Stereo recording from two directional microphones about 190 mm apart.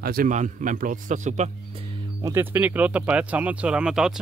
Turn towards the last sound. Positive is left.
turn(degrees=-5)  # may be behind; listen again after turning